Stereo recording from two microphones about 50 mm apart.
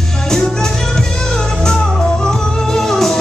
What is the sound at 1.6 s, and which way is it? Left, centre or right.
Music, centre.